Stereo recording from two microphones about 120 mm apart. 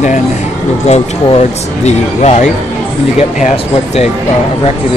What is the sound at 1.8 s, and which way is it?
Speech, 70° left (ahead or behind).